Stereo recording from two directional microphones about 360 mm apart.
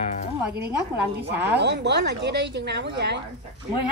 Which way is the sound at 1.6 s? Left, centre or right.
Right.